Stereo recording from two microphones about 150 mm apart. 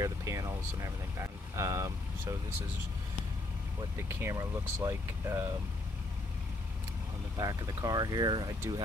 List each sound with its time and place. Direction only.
0.0 s speech: 20° right (ahead or behind)
4.2 s speech: 20° right (ahead or behind)
7.3 s speech: 25° right (ahead or behind)